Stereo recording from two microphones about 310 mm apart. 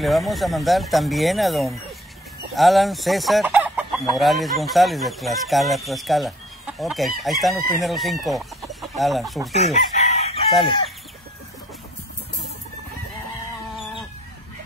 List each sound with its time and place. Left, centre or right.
0.0 s chicken: centre
7.8 s speech: centre
9.5 s chicken: left